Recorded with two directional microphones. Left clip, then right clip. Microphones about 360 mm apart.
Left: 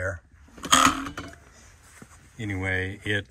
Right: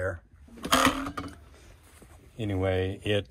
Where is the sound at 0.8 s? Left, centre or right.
Right.